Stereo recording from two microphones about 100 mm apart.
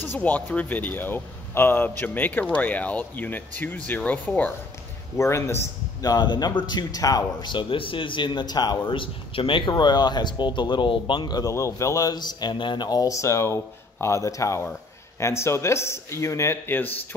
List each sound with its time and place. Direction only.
0.0 s speech: 15° left (ahead or behind)
5.1 s speech: 30° left (ahead or behind)
6.0 s speech: 45° left (ahead or behind); by 16.8 s 25° left (ahead or behind)